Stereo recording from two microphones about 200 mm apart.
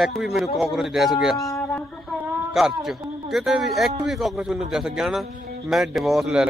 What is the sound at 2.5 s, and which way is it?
A man's voice, centre (ahead or behind).